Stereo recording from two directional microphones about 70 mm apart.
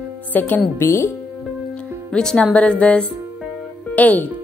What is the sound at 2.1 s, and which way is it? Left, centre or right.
Speech, centre.